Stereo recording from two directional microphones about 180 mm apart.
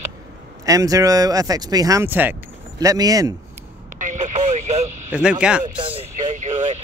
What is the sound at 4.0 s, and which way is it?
Vehicle, 45° right (ahead or behind).